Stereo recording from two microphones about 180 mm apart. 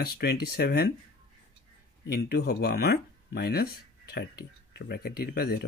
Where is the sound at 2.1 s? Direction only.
65° left (ahead or behind).